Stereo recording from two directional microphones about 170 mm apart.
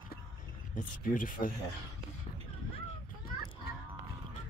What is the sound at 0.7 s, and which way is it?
Speech, 55° left (ahead or behind).